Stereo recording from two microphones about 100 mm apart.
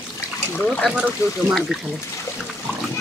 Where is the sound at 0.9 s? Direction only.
15° right (ahead or behind).